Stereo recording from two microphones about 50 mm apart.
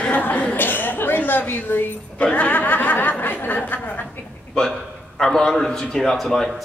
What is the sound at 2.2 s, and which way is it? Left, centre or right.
Speech, left.